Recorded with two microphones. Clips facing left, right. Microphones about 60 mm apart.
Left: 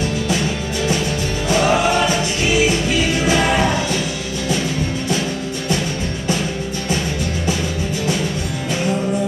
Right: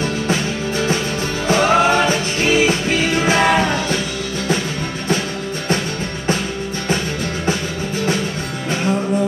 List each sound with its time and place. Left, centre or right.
0.3 s music: right